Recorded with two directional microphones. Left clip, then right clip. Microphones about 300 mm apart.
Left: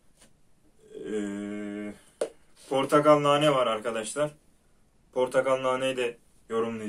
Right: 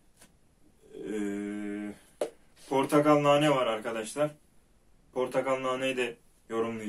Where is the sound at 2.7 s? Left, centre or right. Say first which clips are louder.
Left 3 dB; centre.